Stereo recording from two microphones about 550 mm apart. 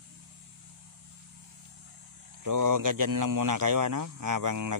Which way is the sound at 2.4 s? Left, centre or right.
Right.